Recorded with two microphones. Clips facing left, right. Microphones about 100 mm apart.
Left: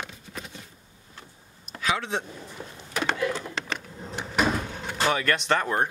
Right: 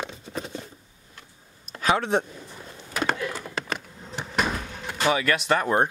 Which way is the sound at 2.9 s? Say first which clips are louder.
Even; centre (ahead or behind).